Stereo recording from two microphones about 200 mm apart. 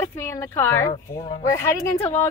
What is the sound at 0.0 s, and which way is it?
A woman's voice, 15° left (ahead or behind).